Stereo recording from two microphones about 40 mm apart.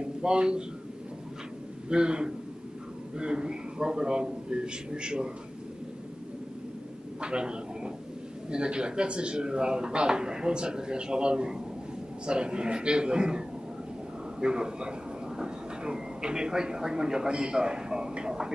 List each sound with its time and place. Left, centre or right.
0.2 s speech: right
1.9 s speech: right
7.2 s a sound: right
8.5 s speech: right
14.4 s speech: right